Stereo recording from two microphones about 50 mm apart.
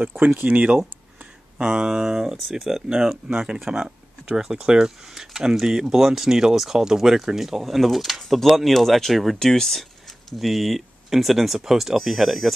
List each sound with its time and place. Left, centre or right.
0.4 s speech: right
1.6 s speech: centre